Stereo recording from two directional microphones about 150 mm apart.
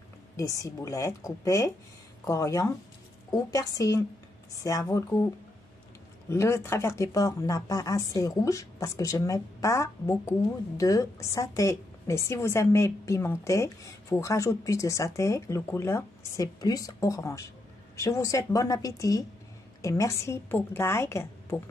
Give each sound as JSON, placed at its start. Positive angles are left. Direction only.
{"t": 0.4, "sound": "a woman's voice", "side_deg": 20}